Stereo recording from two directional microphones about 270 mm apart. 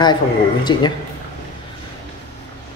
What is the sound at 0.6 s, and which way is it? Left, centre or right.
Speech, centre.